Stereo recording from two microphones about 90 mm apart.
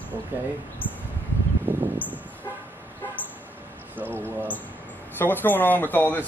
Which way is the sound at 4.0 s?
20° right (ahead or behind).